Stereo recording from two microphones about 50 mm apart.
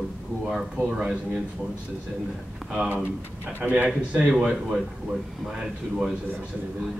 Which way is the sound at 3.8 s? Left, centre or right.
Right.